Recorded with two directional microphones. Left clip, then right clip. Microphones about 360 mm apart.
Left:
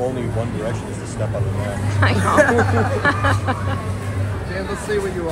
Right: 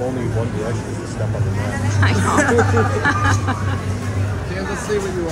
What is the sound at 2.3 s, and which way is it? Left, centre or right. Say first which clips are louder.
Speech: left 2 dB; centre.